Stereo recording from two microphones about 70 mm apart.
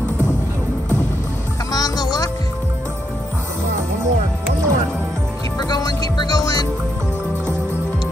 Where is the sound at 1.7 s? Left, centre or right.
Left.